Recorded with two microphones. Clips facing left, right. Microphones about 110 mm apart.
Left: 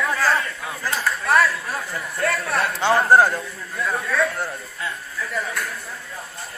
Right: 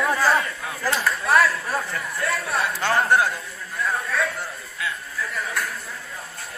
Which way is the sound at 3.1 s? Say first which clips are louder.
Left 5 dB; 30° left (ahead or behind).